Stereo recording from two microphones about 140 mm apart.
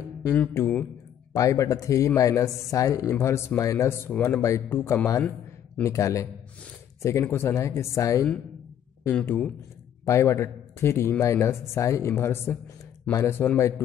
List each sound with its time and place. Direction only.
0.2 s speech: 15° left (ahead or behind)
1.3 s speech: 25° left (ahead or behind)
4.1 s speech: 10° left (ahead or behind)
4.4 s speech: 20° left (ahead or behind)
9.1 s speech: 10° left (ahead or behind)